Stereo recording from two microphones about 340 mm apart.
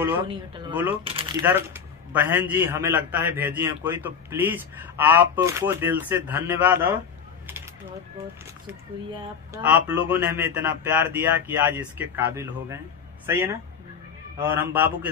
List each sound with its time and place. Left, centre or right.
0.0 s speech: centre
8.6 s speech: centre